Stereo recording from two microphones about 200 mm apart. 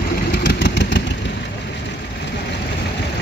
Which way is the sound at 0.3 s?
60° left (ahead or behind).